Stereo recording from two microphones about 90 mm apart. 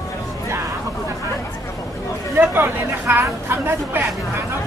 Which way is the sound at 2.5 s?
25° right (ahead or behind).